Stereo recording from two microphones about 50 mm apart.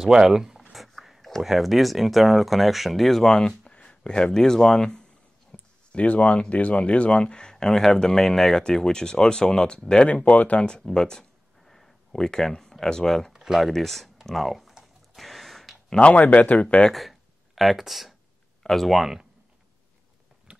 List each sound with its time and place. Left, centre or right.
0.0 s speech: centre
0.7 s a sound: centre
1.4 s speech: centre
3.3 s speech: left
5.5 s a sound: left
6.5 s speech: left
10.3 s speech: left
10.8 s speech: centre
11.6 s typing: centre
13.3 s speech: centre
15.1 s gasp: centre
16.0 s speech: left
16.9 s speech: centre